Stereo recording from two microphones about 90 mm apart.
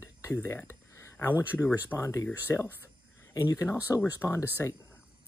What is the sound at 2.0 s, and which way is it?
Speech, 35° left (ahead or behind).